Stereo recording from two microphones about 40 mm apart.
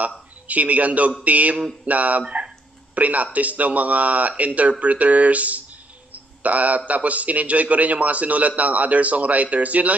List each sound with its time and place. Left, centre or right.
0.5 s a man's voice: right
2.2 s a sound: right
2.9 s a man's voice: right
6.1 s cricket: right
6.9 s a man's voice: right